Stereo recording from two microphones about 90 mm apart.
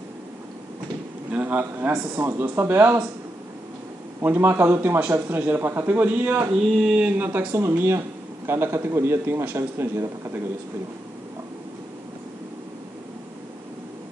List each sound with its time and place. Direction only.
1.3 s a man's voice: 15° right (ahead or behind)
4.2 s a man's voice: 25° right (ahead or behind)
7.5 s a man's voice: 30° right (ahead or behind)